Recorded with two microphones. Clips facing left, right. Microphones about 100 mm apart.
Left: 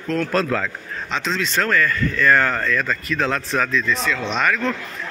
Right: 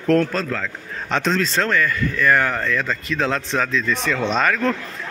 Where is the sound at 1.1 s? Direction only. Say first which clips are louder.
Right 4 dB; 50° right (ahead or behind).